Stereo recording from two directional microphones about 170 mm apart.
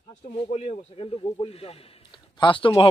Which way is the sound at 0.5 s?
35° left (ahead or behind).